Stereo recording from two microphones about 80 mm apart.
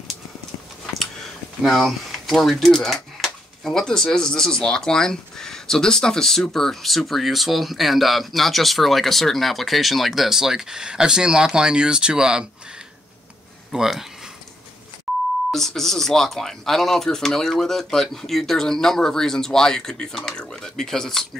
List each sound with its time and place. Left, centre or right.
0.9 s speech: centre
13.7 s speech: centre
15.1 s beep: centre
15.5 s speech: centre